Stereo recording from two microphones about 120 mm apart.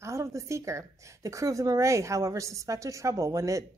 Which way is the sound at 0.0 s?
25° right (ahead or behind).